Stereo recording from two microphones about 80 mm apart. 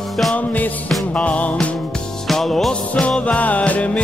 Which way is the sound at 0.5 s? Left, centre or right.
Left.